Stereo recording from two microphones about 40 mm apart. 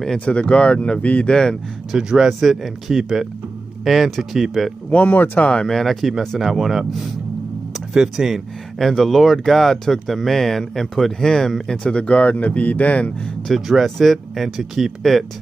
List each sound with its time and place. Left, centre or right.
0.2 s speech: left
1.3 s speech: centre
1.9 s speech: centre
2.2 s speech: centre
4.9 s speech: left
5.7 s speech: centre
7.9 s speech: centre
8.7 s speech: centre
11.8 s speech: left
13.5 s speech: centre
15.1 s speech: centre